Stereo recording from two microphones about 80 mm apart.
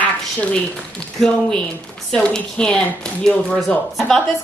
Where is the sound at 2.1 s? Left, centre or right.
Centre.